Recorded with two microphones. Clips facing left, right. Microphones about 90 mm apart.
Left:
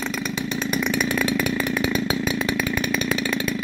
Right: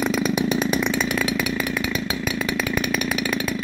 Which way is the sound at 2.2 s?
20° left (ahead or behind).